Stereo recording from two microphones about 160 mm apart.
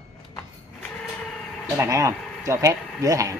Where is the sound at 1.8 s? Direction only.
20° right (ahead or behind).